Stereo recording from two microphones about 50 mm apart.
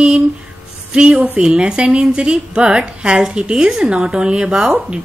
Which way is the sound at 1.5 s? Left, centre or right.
Centre.